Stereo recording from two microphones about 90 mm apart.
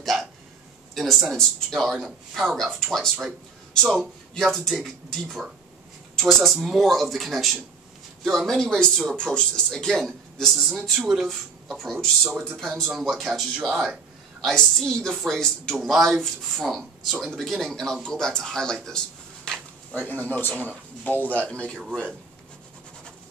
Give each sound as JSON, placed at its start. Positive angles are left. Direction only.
{"t": 0.0, "sound": "hiccup", "side_deg": 0}
{"t": 0.9, "sound": "speech", "side_deg": 0}
{"t": 6.1, "sound": "speech", "side_deg": 5}